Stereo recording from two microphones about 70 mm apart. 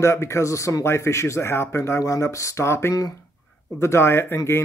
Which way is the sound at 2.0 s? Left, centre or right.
Left.